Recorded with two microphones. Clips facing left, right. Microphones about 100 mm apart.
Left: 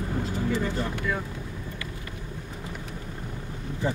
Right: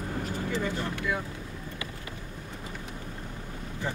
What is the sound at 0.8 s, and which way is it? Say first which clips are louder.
Speech: left 2 dB; 5° right (ahead or behind).